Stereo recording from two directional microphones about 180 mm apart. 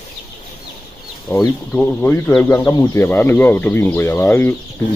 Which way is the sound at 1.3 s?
10° left (ahead or behind).